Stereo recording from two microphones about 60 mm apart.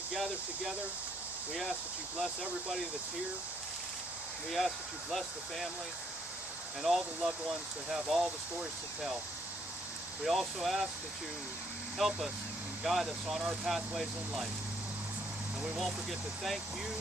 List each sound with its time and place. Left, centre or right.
0.1 s speech: centre
2.1 s speech: centre
4.5 s speech: centre
6.8 s speech: centre
10.2 s speech: centre
12.0 s speech: centre
15.6 s speech: centre